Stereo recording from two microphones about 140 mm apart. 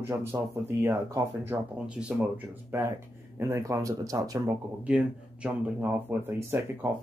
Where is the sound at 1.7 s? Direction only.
5° right (ahead or behind).